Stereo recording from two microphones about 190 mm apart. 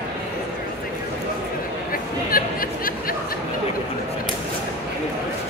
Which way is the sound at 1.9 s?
50° left (ahead or behind).